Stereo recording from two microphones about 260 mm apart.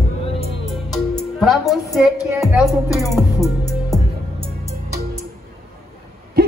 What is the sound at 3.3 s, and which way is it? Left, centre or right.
Music, centre.